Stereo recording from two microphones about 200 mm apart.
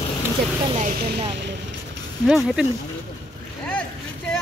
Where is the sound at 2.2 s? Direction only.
5° right (ahead or behind).